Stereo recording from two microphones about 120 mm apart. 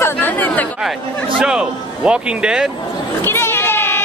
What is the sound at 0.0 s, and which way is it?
Chatter, 15° left (ahead or behind).